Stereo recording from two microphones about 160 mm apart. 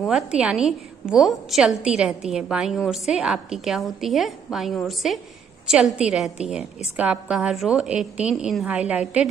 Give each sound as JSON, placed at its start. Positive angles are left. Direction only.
{"t": 0.0, "sound": "a woman's voice", "side_deg": -5}